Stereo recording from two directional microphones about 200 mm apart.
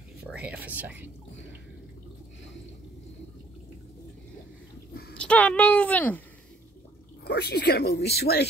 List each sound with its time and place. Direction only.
0.2 s speech: 5° right (ahead or behind)
5.1 s speech: 5° left (ahead or behind)
7.2 s speech: 55° left (ahead or behind)